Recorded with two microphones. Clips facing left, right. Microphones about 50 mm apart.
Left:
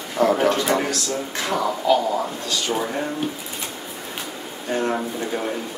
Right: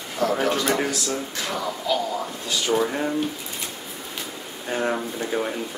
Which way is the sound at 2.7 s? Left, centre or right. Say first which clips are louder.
Right 2 dB; centre.